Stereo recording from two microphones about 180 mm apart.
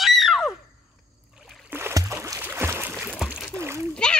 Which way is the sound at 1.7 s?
15° right (ahead or behind).